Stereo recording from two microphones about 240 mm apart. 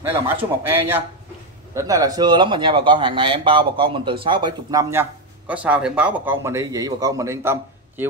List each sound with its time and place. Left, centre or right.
0.3 s a man's voice: centre